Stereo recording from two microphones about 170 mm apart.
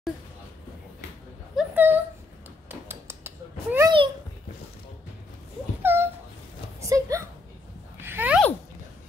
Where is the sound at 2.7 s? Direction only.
15° right (ahead or behind).